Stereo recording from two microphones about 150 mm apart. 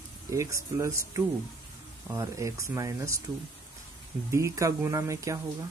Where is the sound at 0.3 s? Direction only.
20° right (ahead or behind).